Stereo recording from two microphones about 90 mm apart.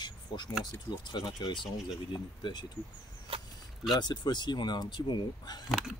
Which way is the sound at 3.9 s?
55° left (ahead or behind).